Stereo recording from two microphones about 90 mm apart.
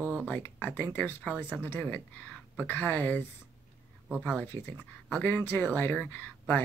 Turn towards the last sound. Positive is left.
turn(degrees=20)  # may be behind; listen again after turning